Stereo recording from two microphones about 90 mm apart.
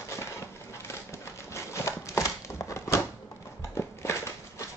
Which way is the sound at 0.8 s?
30° left (ahead or behind).